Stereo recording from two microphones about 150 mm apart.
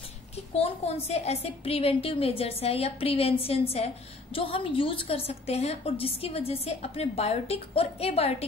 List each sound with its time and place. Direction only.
0.6 s a woman's voice: 45° left (ahead or behind)